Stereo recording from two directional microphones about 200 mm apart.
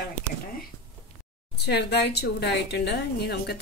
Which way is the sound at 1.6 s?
55° left (ahead or behind).